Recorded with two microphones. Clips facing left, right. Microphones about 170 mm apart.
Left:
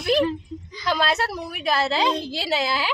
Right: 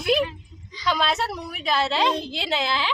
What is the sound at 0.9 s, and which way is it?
A woman's voice, 5° left (ahead or behind).